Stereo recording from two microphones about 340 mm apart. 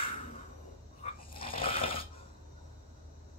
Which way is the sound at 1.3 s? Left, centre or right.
Centre.